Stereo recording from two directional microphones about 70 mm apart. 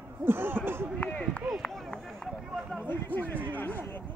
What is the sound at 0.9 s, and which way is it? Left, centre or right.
Run, centre.